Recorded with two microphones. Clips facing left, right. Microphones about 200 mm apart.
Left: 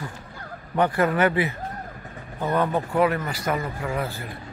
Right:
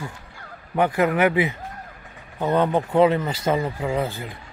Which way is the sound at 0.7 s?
10° right (ahead or behind).